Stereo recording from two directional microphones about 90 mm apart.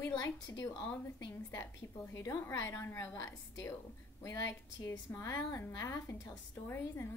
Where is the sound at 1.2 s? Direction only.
30° left (ahead or behind).